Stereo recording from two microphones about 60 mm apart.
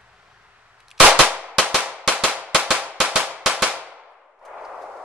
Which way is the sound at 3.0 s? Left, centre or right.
Right.